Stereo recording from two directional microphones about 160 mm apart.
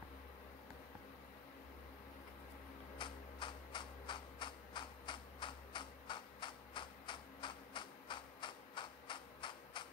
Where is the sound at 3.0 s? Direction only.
30° left (ahead or behind).